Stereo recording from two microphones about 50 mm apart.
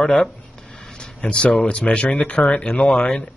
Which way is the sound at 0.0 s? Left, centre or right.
Centre.